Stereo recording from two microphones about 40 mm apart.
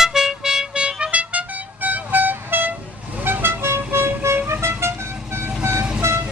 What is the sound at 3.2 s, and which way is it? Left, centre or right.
Vehicle, right.